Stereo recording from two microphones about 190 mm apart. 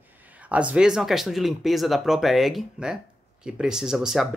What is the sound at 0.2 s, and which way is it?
Speech, 10° right (ahead or behind).